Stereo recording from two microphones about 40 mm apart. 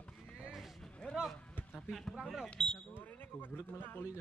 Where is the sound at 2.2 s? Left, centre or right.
Centre.